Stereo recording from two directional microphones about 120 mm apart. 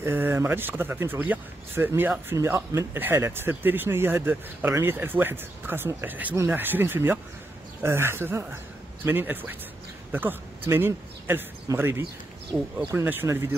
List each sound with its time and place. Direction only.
0.0 s a man's voice: 20° right (ahead or behind)